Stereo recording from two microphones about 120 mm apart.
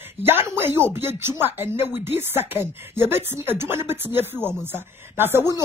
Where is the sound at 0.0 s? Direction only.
20° right (ahead or behind).